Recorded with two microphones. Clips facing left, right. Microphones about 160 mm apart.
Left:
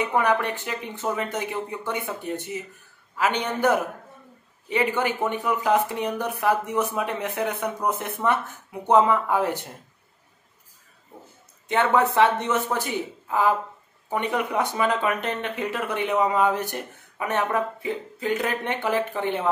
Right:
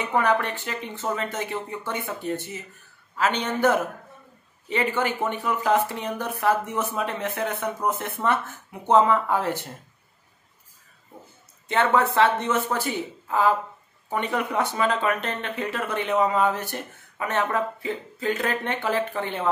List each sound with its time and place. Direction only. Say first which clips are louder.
0.1 s speech: even; 15° left (ahead or behind)
11.6 s speech: left 1 dB; 15° left (ahead or behind)
14.1 s speech: left 1 dB; 15° left (ahead or behind)